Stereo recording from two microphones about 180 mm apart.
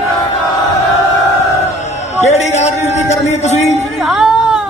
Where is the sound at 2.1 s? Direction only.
40° left (ahead or behind).